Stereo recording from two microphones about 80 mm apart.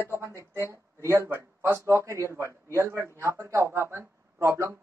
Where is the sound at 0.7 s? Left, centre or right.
Right.